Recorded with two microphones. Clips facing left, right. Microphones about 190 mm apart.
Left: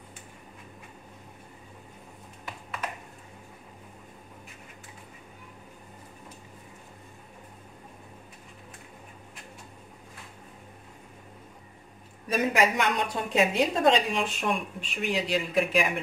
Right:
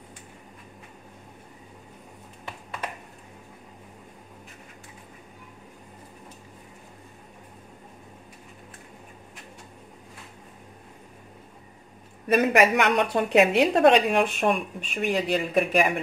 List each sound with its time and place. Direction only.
12.3 s a woman's voice: 65° right (ahead or behind)